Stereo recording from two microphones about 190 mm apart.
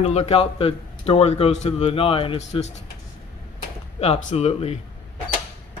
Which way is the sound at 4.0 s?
35° left (ahead or behind).